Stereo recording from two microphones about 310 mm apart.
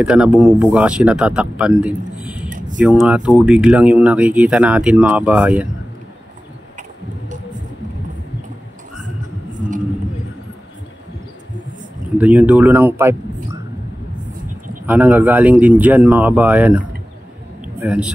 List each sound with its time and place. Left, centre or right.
0.0 s speech: centre
9.5 s vehicle: right
12.2 s speech: centre
14.9 s speech: centre